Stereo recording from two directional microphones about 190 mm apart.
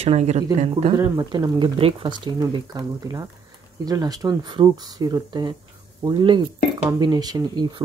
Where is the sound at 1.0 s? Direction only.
20° right (ahead or behind).